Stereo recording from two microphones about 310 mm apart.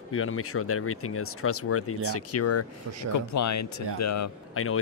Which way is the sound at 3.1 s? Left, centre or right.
Left.